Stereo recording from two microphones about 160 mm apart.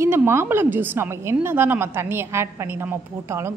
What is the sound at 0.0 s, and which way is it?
A woman's voice, 15° right (ahead or behind).